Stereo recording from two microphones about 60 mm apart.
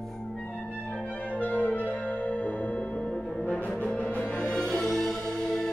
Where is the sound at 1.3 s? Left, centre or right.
Left.